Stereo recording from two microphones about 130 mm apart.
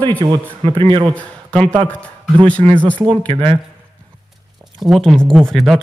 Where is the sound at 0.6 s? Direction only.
40° right (ahead or behind).